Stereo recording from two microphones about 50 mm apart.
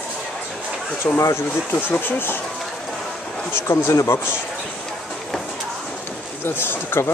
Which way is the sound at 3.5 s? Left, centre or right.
Left.